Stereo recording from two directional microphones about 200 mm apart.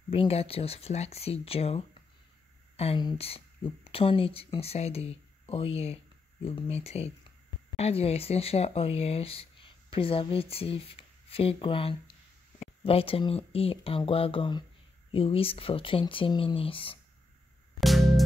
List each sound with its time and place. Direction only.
0.1 s speech: 30° left (ahead or behind)
17.7 s music: centre (ahead or behind)